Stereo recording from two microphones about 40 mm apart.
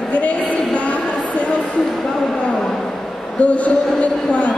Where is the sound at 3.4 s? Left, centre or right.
Left.